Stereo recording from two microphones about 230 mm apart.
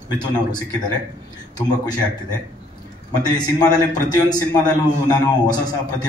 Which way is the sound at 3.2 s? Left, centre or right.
Centre.